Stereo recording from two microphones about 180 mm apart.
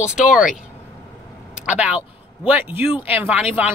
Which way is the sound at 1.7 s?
10° right (ahead or behind).